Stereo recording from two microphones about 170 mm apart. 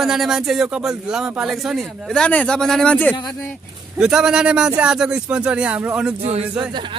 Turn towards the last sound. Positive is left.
turn(degrees=-30)  # may be behind; listen again after turning